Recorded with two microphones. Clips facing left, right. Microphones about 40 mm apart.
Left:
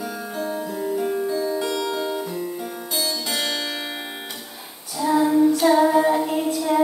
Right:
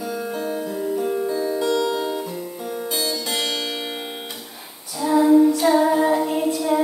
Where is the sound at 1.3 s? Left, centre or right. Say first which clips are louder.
Right 1 dB; centre.